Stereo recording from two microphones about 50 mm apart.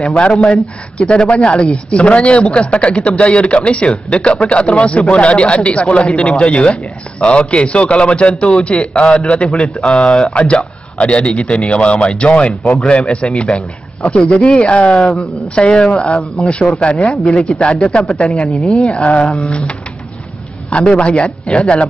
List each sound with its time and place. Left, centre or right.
0.0 s speech: left
20.7 s speech: left